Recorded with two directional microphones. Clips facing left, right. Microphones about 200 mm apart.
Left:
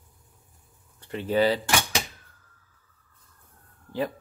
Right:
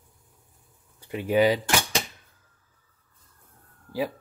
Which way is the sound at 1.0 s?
10° right (ahead or behind).